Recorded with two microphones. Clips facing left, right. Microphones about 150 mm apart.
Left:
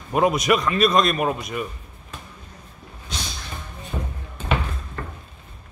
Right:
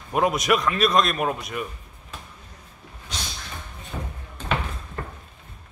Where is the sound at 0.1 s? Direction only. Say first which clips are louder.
Left 2 dB; centre (ahead or behind).